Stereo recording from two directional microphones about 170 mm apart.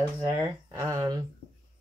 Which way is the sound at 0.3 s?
25° right (ahead or behind).